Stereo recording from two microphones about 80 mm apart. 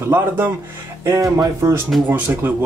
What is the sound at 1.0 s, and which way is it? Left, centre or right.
Music, right.